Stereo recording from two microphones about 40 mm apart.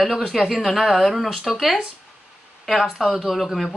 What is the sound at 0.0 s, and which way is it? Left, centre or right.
A woman's voice, centre.